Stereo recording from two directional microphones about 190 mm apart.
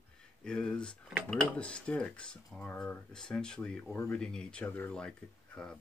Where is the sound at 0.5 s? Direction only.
5° left (ahead or behind).